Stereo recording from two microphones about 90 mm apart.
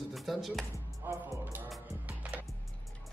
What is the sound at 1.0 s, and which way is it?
Speech, 25° right (ahead or behind).